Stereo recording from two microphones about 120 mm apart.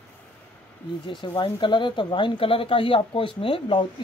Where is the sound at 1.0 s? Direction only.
40° left (ahead or behind).